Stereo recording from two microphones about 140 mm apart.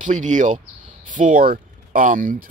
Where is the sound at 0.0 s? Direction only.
60° right (ahead or behind).